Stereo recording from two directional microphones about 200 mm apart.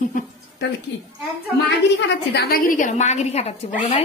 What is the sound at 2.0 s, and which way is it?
A woman's voice, 50° left (ahead or behind).